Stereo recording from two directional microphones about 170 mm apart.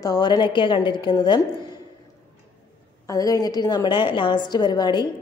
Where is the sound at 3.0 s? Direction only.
20° left (ahead or behind).